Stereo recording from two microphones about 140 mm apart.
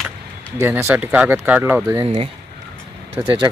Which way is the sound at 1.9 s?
40° right (ahead or behind).